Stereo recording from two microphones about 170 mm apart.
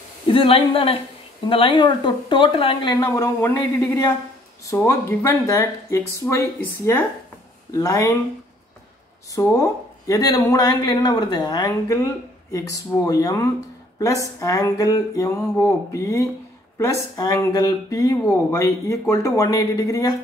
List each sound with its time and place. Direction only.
0.3 s speech: 30° left (ahead or behind); by 3.5 s 15° left (ahead or behind)
4.6 s speech: 15° left (ahead or behind)
9.3 s speech: 20° left (ahead or behind)